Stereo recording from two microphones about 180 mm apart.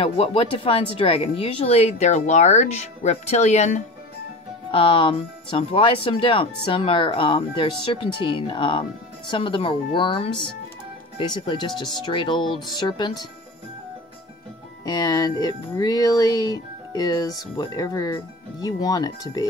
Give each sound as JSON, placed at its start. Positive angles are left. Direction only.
{"t": 0.0, "sound": "speech", "side_deg": 30}
{"t": 14.9, "sound": "speech", "side_deg": 20}